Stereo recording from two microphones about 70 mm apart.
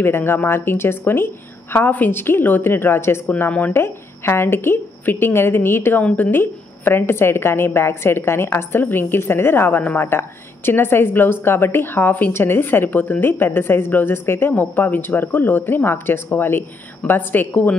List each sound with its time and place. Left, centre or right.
0.0 s a woman's voice: left
6.0 s a woman's voice: centre
6.3 s a woman's voice: left